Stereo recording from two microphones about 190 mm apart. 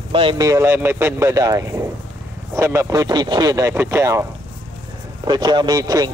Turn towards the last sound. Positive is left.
turn(degrees=-20)  # may be behind; listen again after turning